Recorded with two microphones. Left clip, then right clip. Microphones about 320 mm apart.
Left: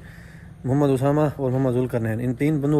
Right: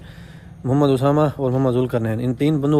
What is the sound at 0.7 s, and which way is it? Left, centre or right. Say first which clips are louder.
A man's voice: right 3 dB; centre.